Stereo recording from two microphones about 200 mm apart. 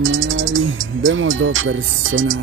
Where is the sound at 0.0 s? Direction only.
75° right (ahead or behind).